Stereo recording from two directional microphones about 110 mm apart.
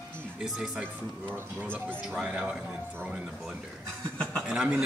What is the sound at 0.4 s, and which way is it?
Speech, 5° right (ahead or behind).